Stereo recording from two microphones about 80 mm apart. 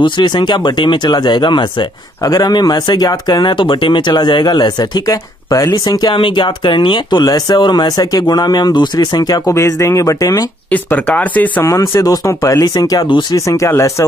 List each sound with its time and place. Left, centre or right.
0.0 s speech: left
2.2 s speech: left
9.5 s speech: left
10.7 s speech: left
11.6 s speech: left
12.3 s speech: left
13.7 s speech: left